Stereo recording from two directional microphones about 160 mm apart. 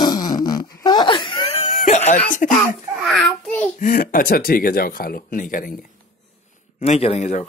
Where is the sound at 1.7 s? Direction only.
50° left (ahead or behind).